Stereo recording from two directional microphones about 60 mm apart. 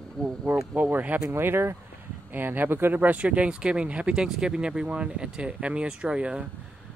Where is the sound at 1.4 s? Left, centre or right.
Right.